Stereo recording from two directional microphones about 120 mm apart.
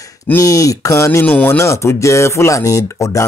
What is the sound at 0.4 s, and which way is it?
Speech, 25° left (ahead or behind).